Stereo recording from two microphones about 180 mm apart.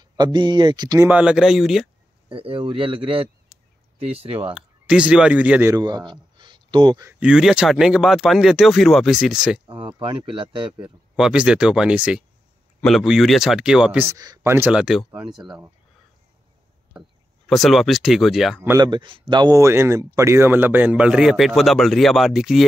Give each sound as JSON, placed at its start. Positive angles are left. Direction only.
{"t": 0.0, "sound": "speech", "side_deg": -25}
{"t": 1.1, "sound": "speech", "side_deg": -5}
{"t": 2.2, "sound": "speech", "side_deg": -30}
{"t": 4.5, "sound": "speech", "side_deg": -5}
{"t": 5.8, "sound": "speech", "side_deg": -20}
{"t": 7.1, "sound": "speech", "side_deg": -5}
{"t": 9.9, "sound": "speech", "side_deg": -30}
{"t": 10.8, "sound": "speech", "side_deg": -5}
{"t": 17.5, "sound": "speech", "side_deg": 0}
{"t": 18.6, "sound": "speech", "side_deg": -15}
{"t": 18.9, "sound": "speech", "side_deg": -30}